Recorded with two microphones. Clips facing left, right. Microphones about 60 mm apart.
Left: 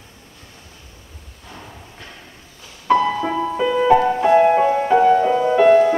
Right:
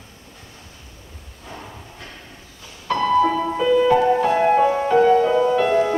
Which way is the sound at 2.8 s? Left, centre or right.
Centre.